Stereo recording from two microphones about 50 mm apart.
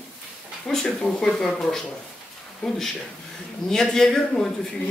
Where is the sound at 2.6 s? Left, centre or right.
Centre.